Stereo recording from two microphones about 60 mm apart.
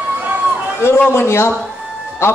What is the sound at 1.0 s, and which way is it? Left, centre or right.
A man's voice, left.